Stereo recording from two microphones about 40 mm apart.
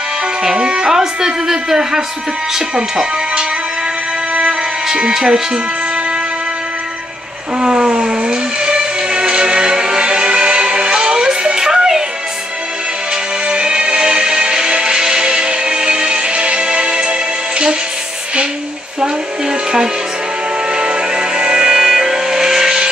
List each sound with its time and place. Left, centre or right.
0.4 s speech: centre
4.5 s music: centre
7.5 s music: right
13.5 s music: right
20.7 s music: right